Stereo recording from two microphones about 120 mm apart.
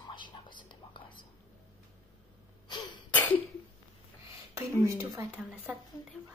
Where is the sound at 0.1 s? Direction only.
40° left (ahead or behind).